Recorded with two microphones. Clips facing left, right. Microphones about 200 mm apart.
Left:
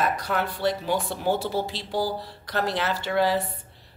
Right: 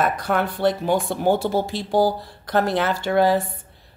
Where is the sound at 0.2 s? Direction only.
50° right (ahead or behind).